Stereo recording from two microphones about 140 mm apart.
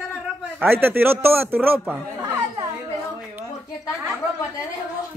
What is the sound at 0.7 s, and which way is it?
A man's voice, 15° right (ahead or behind).